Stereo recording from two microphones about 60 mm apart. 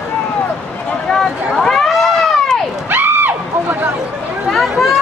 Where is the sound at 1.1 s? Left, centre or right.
Centre.